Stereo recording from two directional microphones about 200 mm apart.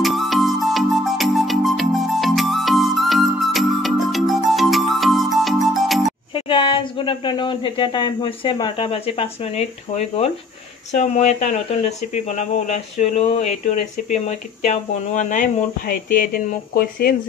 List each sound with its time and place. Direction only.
0.0 s music: centre (ahead or behind)
6.3 s speech: 25° left (ahead or behind); by 17.1 s 45° left (ahead or behind)